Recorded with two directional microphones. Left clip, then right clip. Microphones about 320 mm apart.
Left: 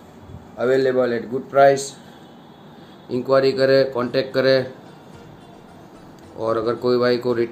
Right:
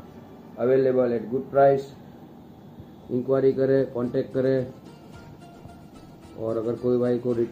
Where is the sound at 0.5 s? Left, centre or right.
Centre.